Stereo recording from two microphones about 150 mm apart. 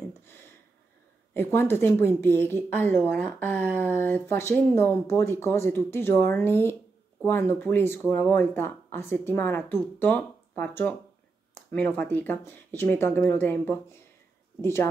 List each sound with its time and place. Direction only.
1.3 s speech: 15° left (ahead or behind)